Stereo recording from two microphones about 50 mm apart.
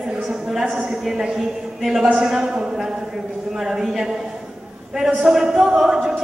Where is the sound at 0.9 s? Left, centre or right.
Centre.